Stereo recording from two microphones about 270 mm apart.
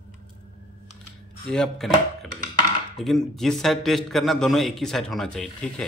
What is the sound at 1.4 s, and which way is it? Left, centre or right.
A man's voice, centre.